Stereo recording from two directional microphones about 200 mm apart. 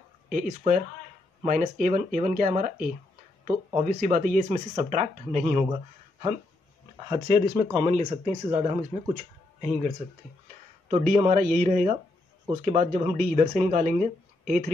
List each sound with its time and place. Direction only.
0.3 s speech: 45° right (ahead or behind)
7.1 s speech: 20° right (ahead or behind); by 14.0 s 35° right (ahead or behind)